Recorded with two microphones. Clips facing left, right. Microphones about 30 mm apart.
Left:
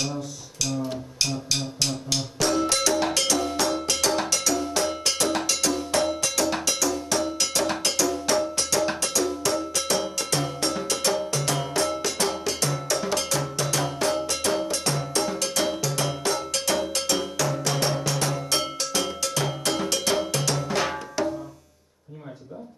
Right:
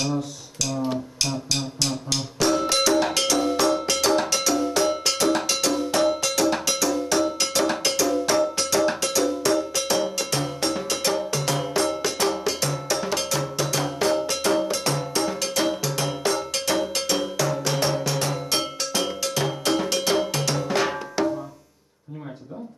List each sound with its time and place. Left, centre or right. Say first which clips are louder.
2.3 s music: right 3 dB; centre
6.4 s cowbell: right 2 dB; centre
13.9 s music: right 3 dB; centre
15.8 s cowbell: right 1 dB; centre